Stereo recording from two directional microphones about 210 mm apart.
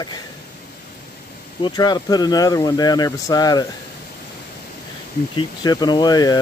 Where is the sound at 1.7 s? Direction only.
20° left (ahead or behind).